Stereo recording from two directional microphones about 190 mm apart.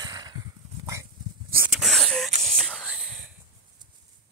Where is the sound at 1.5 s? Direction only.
10° right (ahead or behind).